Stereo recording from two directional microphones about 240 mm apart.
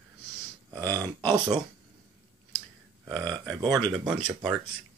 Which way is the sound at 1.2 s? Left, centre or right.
Centre.